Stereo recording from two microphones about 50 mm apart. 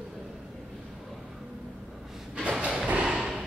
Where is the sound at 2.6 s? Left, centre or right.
Right.